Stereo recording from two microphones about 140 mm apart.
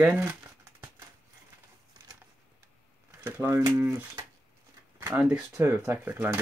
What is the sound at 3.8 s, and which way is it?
Speech, 20° right (ahead or behind).